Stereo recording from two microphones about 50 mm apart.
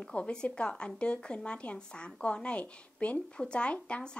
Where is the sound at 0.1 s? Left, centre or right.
Centre.